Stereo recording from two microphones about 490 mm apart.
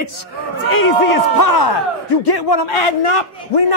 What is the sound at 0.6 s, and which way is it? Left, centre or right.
Speech, left.